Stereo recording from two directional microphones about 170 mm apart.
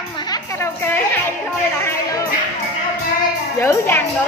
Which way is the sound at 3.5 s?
15° left (ahead or behind).